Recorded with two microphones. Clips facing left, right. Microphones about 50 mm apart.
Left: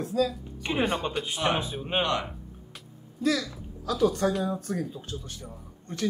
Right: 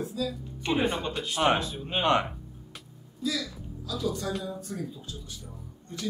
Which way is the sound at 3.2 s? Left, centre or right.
Left.